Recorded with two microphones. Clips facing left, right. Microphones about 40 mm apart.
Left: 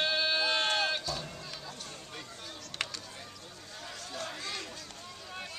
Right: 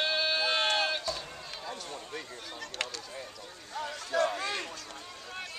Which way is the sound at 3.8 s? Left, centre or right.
Right.